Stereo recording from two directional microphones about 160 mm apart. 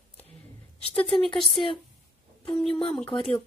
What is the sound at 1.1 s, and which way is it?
Speech, 35° left (ahead or behind).